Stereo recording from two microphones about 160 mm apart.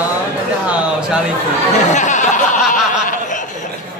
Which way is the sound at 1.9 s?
50° left (ahead or behind).